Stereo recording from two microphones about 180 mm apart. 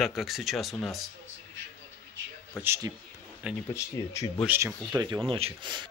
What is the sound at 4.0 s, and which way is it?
Speech, 20° left (ahead or behind).